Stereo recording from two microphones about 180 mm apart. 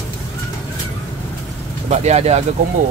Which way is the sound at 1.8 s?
40° right (ahead or behind).